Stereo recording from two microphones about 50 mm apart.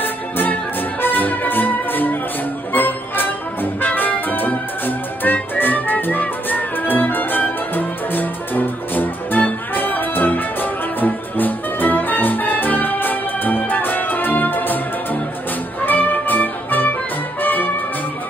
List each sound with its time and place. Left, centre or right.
0.0 s music: left
15.8 s music: left